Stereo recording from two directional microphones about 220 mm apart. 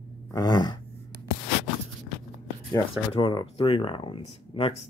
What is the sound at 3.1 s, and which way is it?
Speech, 20° left (ahead or behind).